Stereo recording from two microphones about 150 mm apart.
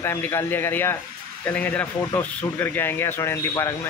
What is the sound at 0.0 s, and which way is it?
A man's voice, 15° left (ahead or behind).